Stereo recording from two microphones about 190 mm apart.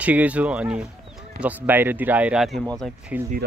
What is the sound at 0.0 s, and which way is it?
Speech, 10° right (ahead or behind).